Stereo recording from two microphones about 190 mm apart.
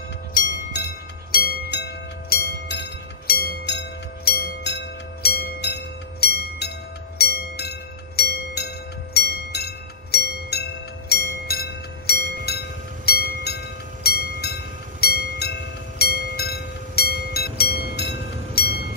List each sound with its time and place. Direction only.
1.3 s music: 55° left (ahead or behind)
14.0 s train: 55° left (ahead or behind)
15.0 s music: 55° left (ahead or behind)
18.5 s train: 55° left (ahead or behind)